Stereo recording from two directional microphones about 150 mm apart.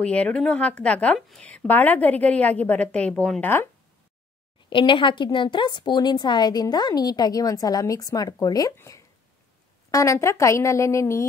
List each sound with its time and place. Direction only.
0.0 s a woman's voice: 10° left (ahead or behind)
4.6 s speech: 35° left (ahead or behind)